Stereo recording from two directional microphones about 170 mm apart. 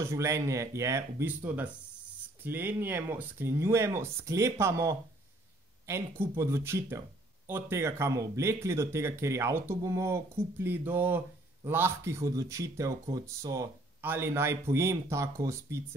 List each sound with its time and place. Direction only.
0.0 s speech: 15° right (ahead or behind)